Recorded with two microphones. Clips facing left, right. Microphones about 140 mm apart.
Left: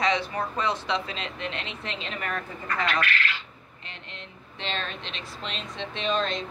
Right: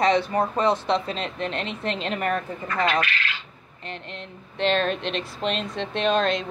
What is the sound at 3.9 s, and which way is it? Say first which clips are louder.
Speech: right 8 dB; 50° right (ahead or behind).